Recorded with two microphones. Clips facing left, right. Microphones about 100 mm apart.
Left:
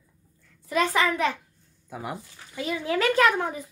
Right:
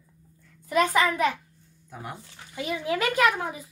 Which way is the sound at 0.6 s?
25° right (ahead or behind).